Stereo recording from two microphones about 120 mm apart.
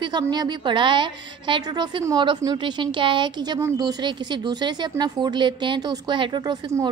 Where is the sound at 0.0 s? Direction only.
35° right (ahead or behind).